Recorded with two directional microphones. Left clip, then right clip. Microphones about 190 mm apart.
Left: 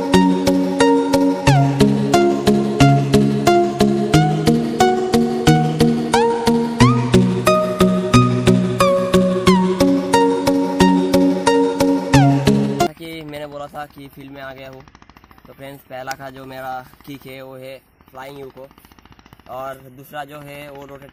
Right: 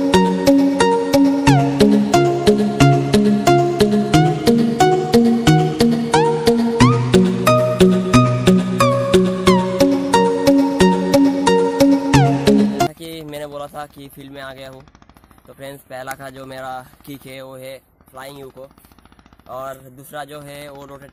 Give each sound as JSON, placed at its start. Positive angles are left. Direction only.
{"t": 0.1, "sound": "music", "side_deg": 0}
{"t": 13.0, "sound": "music", "side_deg": -30}
{"t": 13.5, "sound": "a sound", "side_deg": 0}
{"t": 14.3, "sound": "speech", "side_deg": -15}
{"t": 18.1, "sound": "speech", "side_deg": -10}
{"t": 19.5, "sound": "speech", "side_deg": -10}